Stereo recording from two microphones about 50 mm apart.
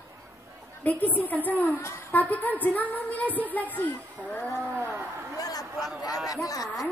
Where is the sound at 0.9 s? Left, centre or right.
Left.